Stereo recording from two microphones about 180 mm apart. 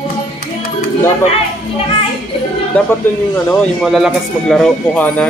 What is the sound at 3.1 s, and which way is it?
Speech, 10° left (ahead or behind).